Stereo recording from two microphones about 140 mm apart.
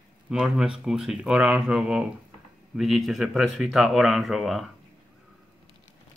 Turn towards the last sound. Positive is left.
turn(degrees=0)  # may be behind; listen again after turning